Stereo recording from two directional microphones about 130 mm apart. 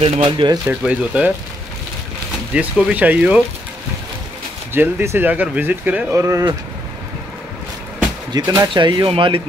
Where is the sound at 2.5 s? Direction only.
10° right (ahead or behind).